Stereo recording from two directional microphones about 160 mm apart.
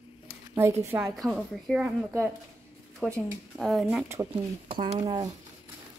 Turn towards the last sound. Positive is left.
turn(degrees=-30)  # may be behind; listen again after turning